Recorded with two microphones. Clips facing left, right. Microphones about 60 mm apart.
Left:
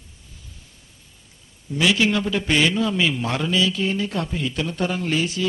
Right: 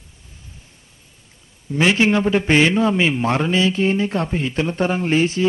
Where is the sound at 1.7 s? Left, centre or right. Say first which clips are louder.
Right 3 dB; right.